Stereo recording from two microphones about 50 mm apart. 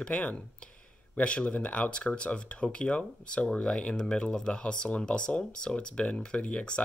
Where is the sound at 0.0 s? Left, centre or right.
Centre.